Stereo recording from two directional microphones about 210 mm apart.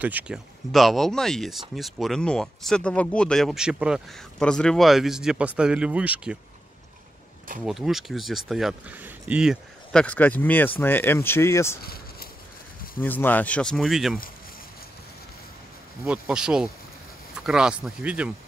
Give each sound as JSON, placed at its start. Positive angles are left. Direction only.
{"t": 0.0, "sound": "speech", "side_deg": -5}
{"t": 7.6, "sound": "speech", "side_deg": 0}
{"t": 11.8, "sound": "a sound", "side_deg": 45}
{"t": 13.0, "sound": "speech", "side_deg": 10}
{"t": 16.0, "sound": "speech", "side_deg": -5}